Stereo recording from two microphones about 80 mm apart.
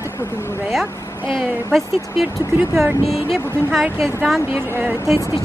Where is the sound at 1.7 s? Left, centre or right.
Centre.